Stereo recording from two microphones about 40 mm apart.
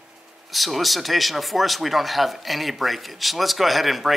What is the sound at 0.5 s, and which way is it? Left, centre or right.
Speech, centre.